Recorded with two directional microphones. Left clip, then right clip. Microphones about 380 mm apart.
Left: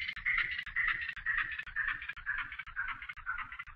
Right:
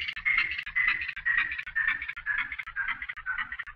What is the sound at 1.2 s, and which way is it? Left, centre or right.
Music, right.